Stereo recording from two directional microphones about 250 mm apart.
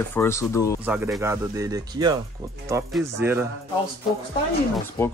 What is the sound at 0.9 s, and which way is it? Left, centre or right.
Speech, centre.